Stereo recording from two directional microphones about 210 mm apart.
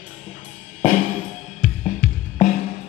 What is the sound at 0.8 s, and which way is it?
Music, 40° left (ahead or behind).